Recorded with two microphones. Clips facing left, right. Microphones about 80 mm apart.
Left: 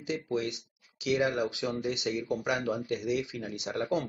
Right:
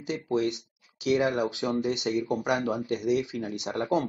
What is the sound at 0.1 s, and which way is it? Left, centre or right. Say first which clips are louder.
Speech: right 4 dB; right.